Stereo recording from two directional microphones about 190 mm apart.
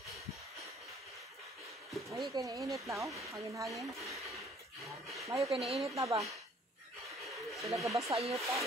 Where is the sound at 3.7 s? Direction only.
Centre (ahead or behind).